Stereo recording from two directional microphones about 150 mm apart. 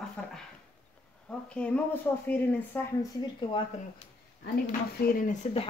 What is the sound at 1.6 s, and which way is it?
Speech, 5° left (ahead or behind).